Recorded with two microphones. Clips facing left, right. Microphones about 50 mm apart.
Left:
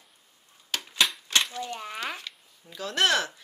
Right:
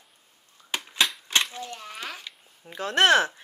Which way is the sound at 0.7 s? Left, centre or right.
Centre.